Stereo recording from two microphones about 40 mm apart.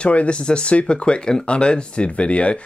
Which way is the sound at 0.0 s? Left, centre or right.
Left.